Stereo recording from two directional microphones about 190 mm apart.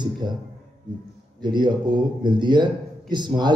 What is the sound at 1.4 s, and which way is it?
A man's voice, 25° right (ahead or behind).